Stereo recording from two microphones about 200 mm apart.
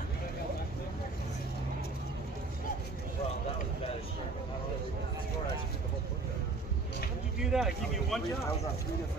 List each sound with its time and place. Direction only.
7.3 s speech: centre (ahead or behind)